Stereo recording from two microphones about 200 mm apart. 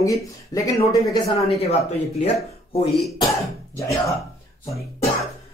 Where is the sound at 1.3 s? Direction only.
30° left (ahead or behind).